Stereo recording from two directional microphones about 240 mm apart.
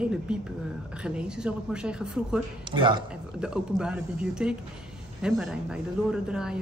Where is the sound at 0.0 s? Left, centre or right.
Centre.